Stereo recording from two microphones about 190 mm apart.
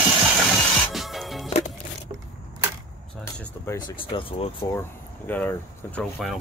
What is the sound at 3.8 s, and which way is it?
Speech, 25° left (ahead or behind).